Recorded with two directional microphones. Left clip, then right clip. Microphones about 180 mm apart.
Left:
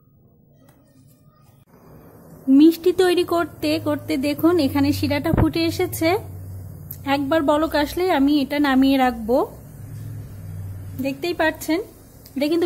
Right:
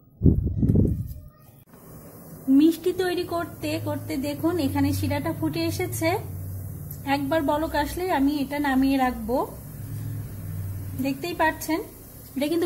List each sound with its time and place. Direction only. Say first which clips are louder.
2.5 s speech: left 6 dB; 20° left (ahead or behind)
11.0 s a woman's voice: left 3 dB; 20° left (ahead or behind)